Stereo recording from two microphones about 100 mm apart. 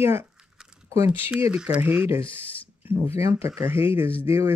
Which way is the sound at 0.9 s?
25° right (ahead or behind).